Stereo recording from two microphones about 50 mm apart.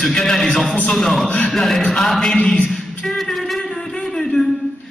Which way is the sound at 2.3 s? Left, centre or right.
Centre.